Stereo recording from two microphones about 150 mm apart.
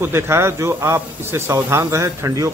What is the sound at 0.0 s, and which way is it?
Speech, 15° right (ahead or behind).